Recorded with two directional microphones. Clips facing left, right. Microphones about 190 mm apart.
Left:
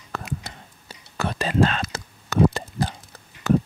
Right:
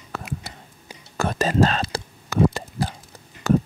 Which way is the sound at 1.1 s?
45° right (ahead or behind).